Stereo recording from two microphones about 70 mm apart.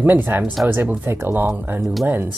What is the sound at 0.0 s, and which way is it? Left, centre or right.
Speech, right.